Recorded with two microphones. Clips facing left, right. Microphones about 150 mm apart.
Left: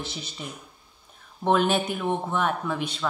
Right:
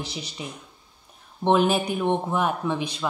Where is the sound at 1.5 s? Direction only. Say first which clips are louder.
Right 2 dB; 5° right (ahead or behind).